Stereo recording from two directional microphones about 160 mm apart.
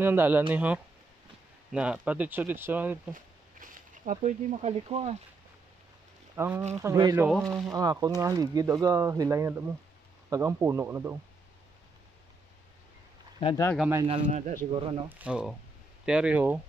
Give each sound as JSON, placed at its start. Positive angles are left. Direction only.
{"t": 0.0, "sound": "speech", "side_deg": -15}
{"t": 3.1, "sound": "speech", "side_deg": -55}
{"t": 6.3, "sound": "speech", "side_deg": -15}
{"t": 7.2, "sound": "speech", "side_deg": 0}
{"t": 7.7, "sound": "speech", "side_deg": -25}
{"t": 13.7, "sound": "speech", "side_deg": -15}
{"t": 14.2, "sound": "speech", "side_deg": -50}
{"t": 14.7, "sound": "speech", "side_deg": -35}
{"t": 15.0, "sound": "speech", "side_deg": -10}